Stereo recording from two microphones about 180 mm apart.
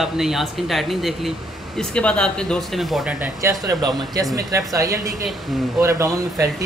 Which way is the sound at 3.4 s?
20° right (ahead or behind).